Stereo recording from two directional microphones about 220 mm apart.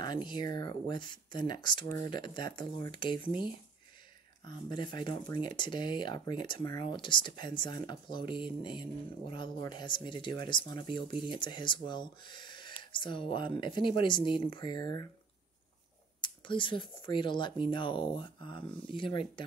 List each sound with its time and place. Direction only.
0.0 s speech: 20° left (ahead or behind)
4.5 s speech: 20° left (ahead or behind)
16.2 s speech: 20° left (ahead or behind)